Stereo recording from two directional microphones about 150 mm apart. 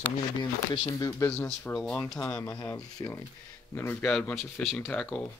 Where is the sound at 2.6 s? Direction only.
20° left (ahead or behind).